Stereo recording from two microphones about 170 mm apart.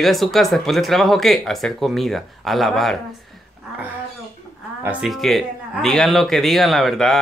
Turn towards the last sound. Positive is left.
turn(degrees=0)  # may be behind; listen again after turning